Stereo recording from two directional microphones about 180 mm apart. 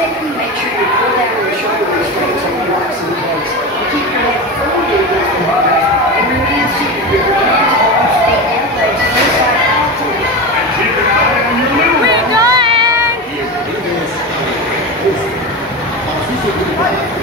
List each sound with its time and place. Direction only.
12.4 s child singing: 20° right (ahead or behind)